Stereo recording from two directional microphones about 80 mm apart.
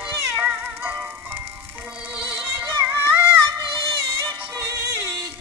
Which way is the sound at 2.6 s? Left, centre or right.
Right.